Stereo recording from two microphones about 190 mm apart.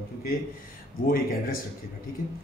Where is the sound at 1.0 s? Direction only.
50° left (ahead or behind).